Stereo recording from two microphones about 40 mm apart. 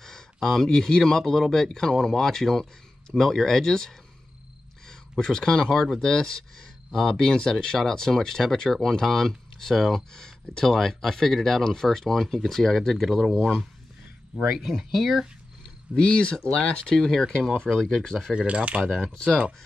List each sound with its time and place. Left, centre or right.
0.0 s speech: centre
5.2 s speech: centre
14.5 s speech: centre
15.9 s speech: left
16.8 s speech: centre
18.3 s speech: right
18.8 s speech: centre